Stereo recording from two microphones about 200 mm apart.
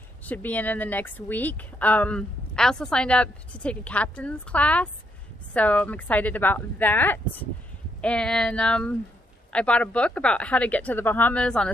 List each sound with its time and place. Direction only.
0.2 s speech: 10° left (ahead or behind)